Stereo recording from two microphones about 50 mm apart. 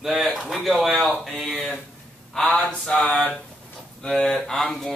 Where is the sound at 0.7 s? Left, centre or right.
Centre.